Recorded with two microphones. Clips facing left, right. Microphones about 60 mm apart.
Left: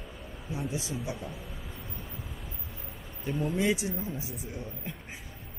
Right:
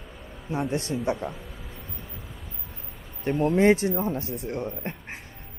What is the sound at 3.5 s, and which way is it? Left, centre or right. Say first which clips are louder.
Speech: right 10 dB; right.